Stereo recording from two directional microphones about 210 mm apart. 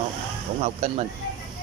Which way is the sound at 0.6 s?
30° right (ahead or behind).